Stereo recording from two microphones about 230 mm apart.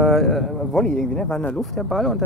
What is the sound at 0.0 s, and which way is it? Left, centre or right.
A man's voice, centre.